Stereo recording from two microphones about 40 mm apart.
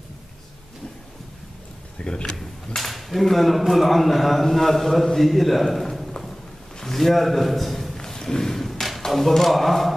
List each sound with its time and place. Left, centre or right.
2.0 s speech: left
2.3 s a man's voice: centre
8.0 s a sound: centre
9.0 s speech: centre